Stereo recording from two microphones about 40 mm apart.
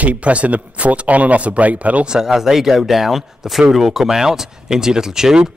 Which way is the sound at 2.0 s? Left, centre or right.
Centre.